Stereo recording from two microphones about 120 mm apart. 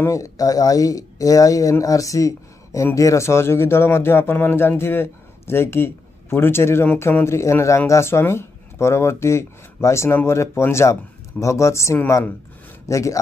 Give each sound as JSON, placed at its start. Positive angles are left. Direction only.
{"t": 0.0, "sound": "speech", "side_deg": 25}